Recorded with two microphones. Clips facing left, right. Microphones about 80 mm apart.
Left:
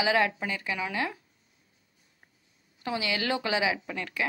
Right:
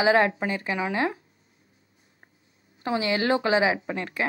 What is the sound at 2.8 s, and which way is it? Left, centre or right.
Speech, right.